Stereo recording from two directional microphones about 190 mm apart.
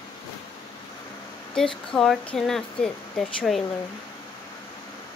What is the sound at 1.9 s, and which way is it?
Speech, 5° left (ahead or behind).